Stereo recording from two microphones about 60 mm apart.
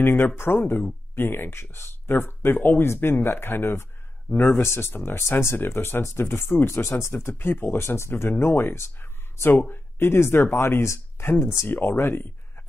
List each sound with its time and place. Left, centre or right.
0.0 s speech: left
4.3 s speech: left
4.6 s speech: left